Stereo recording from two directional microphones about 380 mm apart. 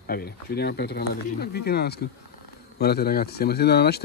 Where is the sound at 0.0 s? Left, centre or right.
Left.